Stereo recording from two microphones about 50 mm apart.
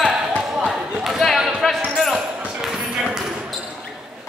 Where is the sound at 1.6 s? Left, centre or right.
Centre.